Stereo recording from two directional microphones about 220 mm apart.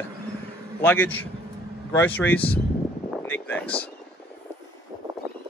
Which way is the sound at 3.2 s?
5° left (ahead or behind).